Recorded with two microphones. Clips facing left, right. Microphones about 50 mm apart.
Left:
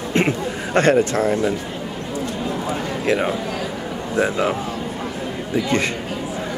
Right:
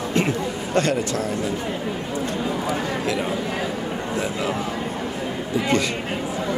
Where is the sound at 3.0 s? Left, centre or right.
Left.